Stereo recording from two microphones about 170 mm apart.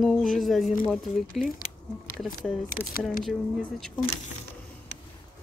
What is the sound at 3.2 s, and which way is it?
Speech, centre (ahead or behind).